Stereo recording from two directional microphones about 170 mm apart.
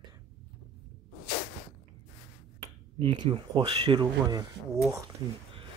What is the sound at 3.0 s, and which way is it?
Speech, 30° right (ahead or behind).